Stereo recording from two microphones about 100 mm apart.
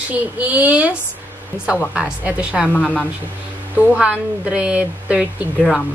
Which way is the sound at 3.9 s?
10° right (ahead or behind).